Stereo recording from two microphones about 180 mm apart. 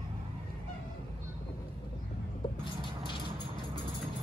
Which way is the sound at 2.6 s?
25° left (ahead or behind).